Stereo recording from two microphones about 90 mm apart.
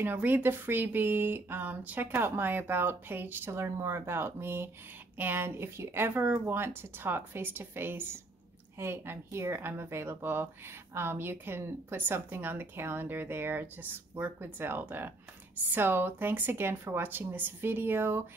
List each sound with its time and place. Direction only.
0.0 s a woman's voice: 20° right (ahead or behind)